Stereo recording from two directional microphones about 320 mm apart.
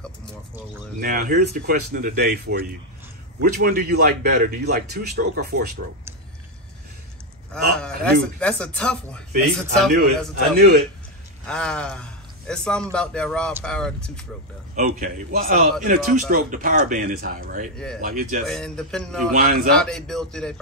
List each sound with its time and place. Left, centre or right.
0.9 s a man's voice: right
7.8 s speech: centre
11.4 s a man's voice: centre
14.8 s a man's voice: right
18.5 s speech: centre
19.3 s a man's voice: right
19.7 s speech: centre